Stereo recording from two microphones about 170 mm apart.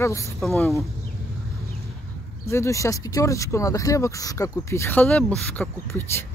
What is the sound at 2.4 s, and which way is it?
Speech, 15° left (ahead or behind).